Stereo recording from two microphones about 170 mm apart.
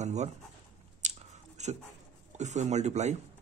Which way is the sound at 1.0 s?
45° right (ahead or behind).